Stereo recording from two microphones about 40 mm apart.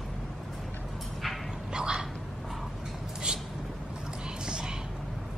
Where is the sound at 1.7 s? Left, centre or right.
Right.